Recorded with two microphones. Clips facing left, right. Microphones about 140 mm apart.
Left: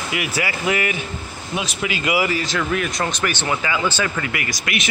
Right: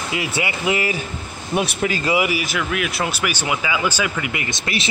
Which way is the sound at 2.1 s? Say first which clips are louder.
Left 2 dB; 15° right (ahead or behind).